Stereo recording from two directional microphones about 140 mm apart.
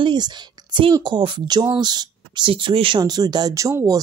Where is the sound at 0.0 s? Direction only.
35° right (ahead or behind).